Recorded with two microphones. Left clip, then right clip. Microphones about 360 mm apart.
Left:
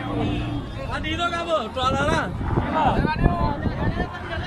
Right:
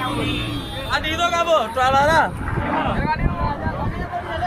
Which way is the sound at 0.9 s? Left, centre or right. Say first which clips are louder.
Right 5 dB; centre.